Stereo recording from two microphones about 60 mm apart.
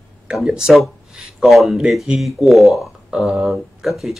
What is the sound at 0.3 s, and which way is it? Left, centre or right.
Speech, centre.